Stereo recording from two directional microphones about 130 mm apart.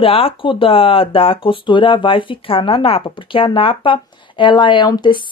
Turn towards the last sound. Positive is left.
turn(degrees=35)  # may be behind; listen again after turning